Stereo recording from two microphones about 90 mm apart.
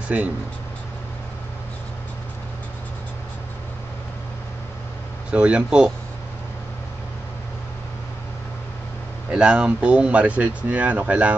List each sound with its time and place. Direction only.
0.1 s speech: 15° right (ahead or behind)
5.3 s speech: 15° right (ahead or behind)
9.3 s speech: 10° right (ahead or behind)